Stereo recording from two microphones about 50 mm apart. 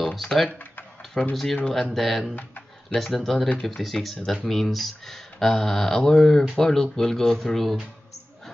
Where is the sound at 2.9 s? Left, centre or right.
Centre.